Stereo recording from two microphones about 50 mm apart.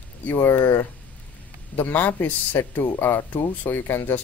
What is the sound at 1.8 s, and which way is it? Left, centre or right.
Speech, left.